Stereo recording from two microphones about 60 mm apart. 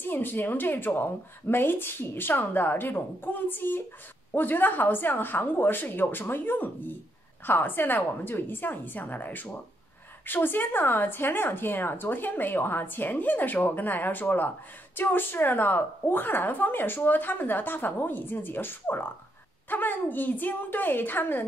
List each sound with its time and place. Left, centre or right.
0.0 s speech: left